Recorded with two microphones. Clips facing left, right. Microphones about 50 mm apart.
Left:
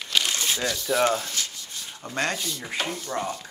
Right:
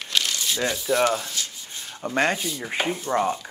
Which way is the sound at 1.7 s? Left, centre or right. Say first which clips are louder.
Right 6 dB; right.